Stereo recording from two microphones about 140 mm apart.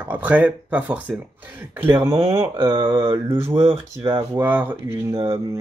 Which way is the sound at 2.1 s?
40° right (ahead or behind).